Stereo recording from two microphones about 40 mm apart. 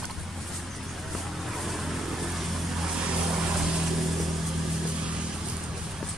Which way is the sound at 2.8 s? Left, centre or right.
Right.